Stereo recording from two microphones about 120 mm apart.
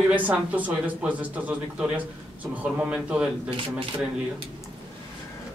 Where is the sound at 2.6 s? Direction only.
10° right (ahead or behind).